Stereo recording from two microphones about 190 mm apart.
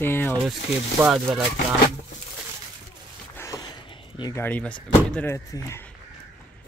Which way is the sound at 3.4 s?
15° left (ahead or behind).